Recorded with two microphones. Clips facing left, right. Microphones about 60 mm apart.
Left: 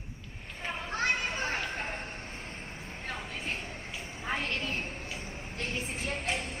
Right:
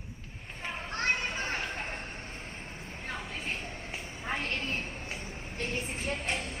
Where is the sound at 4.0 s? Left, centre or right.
Centre.